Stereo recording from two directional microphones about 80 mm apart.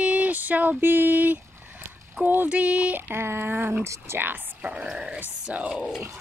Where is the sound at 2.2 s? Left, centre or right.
Centre.